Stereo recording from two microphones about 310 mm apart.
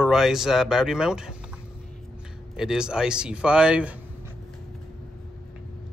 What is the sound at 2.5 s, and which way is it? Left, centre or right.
Speech, centre.